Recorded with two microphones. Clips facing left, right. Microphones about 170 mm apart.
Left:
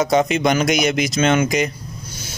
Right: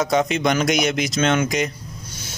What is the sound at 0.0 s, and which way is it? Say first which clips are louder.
Speech: left 3 dB; centre (ahead or behind).